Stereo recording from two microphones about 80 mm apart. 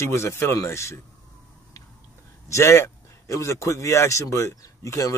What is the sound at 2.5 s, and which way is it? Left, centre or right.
Speech, left.